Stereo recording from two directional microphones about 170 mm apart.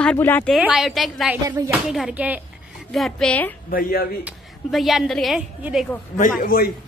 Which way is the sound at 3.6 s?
60° left (ahead or behind).